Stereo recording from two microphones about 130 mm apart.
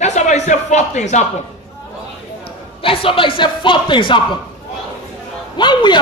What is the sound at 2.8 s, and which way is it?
A man's voice, 45° left (ahead or behind).